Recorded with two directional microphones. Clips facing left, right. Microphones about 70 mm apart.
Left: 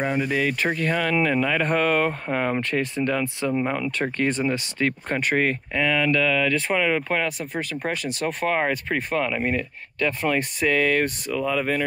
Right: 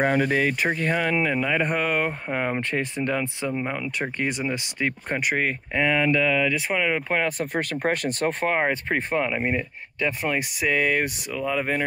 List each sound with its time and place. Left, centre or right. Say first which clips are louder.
0.0 s speech: right 3 dB; right
0.3 s speech: right 1 dB; right
1.1 s speech: left 2 dB; centre
2.7 s speech: left 2 dB; right
3.5 s speech: left 3 dB; centre
4.2 s speech: left 4 dB; centre
5.8 s speech: right 1 dB; right
7.2 s speech: right 2 dB; right
8.5 s speech: left 2 dB; right